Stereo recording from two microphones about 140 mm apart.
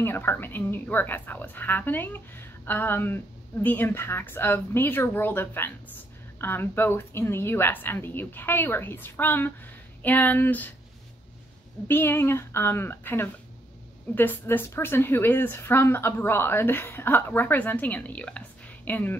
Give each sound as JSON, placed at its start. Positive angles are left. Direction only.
{"t": 0.0, "sound": "a woman's voice", "side_deg": 15}
{"t": 11.9, "sound": "a woman's voice", "side_deg": 15}